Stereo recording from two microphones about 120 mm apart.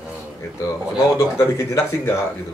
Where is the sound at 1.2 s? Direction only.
25° left (ahead or behind).